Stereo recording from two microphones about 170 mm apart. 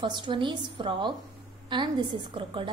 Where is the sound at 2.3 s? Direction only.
30° right (ahead or behind).